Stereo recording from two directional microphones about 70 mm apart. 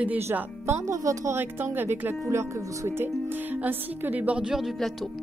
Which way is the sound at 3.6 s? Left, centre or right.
Right.